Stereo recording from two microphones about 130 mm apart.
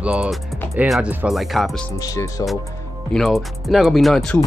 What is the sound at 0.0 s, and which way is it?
Speech, 10° right (ahead or behind).